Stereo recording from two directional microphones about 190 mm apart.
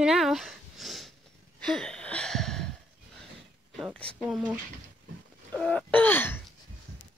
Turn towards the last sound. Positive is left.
turn(degrees=10)  # may be behind; listen again after turning